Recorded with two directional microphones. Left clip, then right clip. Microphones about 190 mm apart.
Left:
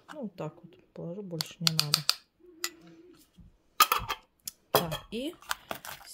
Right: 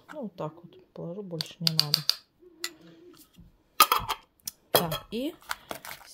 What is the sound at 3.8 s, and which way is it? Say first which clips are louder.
Coin: right 3 dB; 5° right (ahead or behind).